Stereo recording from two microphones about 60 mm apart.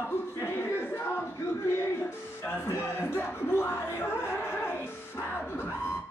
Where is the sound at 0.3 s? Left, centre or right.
Left.